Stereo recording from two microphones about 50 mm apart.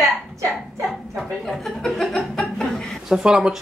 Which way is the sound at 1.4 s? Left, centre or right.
Centre.